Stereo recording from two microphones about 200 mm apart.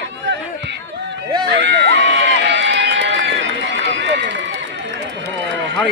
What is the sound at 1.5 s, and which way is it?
Speech, 60° right (ahead or behind).